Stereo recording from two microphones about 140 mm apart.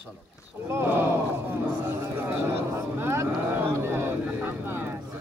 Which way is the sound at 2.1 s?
15° right (ahead or behind).